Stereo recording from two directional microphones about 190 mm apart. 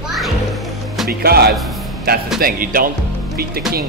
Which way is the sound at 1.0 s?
55° right (ahead or behind).